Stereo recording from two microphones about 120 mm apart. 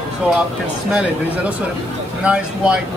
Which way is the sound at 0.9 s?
10° right (ahead or behind).